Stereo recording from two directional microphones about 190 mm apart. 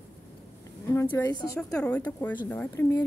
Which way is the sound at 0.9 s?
10° left (ahead or behind).